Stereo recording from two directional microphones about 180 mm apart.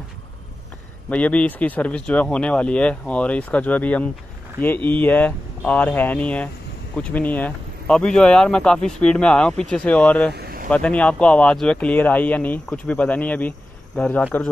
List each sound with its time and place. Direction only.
1.1 s speech: 10° left (ahead or behind)
10.3 s a sound: 60° right (ahead or behind)
10.7 s speech: 5° left (ahead or behind)